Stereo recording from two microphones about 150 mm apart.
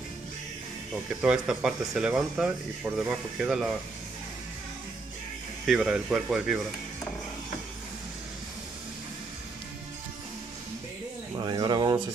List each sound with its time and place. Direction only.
1.2 s speech: 5° right (ahead or behind)
5.7 s speech: centre (ahead or behind)
11.3 s speech: 30° right (ahead or behind)